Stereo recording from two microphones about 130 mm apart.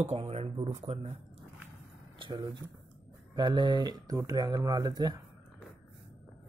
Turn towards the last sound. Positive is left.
turn(degrees=-30)  # may be behind; listen again after turning